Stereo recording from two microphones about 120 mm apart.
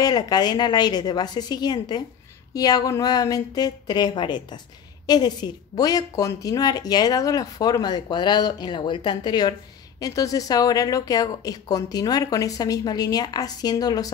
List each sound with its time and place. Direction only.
0.0 s a woman's voice: 35° left (ahead or behind)